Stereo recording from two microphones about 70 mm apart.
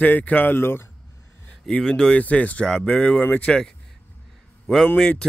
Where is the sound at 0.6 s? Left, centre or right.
Left.